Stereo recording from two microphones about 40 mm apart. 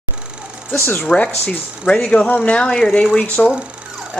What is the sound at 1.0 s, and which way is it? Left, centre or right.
Speech, left.